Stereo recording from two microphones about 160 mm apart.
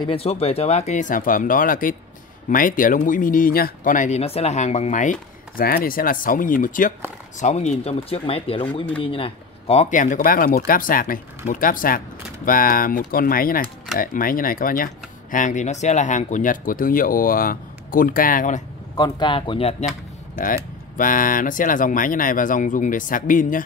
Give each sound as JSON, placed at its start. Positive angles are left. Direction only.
{"t": 0.0, "sound": "speech", "side_deg": 35}
{"t": 5.6, "sound": "speech", "side_deg": 65}
{"t": 7.3, "sound": "speech", "side_deg": 45}
{"t": 15.3, "sound": "speech", "side_deg": 50}
{"t": 18.9, "sound": "speech", "side_deg": 25}
{"t": 20.3, "sound": "speech", "side_deg": 60}